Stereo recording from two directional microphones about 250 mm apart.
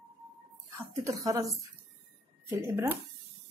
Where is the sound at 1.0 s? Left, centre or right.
Centre.